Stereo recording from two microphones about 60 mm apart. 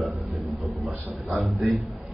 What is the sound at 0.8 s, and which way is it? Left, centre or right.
Speech, right.